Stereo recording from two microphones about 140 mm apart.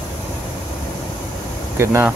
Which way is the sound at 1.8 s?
20° right (ahead or behind).